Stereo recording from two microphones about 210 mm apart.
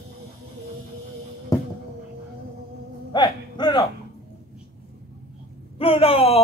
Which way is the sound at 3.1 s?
20° left (ahead or behind).